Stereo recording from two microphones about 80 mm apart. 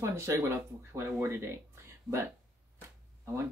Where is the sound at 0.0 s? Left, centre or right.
Right.